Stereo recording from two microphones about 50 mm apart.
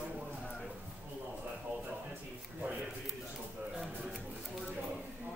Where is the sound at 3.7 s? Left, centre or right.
Centre.